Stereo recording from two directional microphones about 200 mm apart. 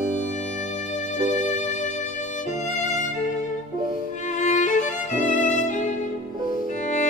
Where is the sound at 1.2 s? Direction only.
35° left (ahead or behind).